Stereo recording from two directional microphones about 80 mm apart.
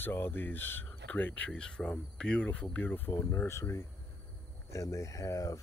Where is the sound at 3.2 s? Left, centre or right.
Left.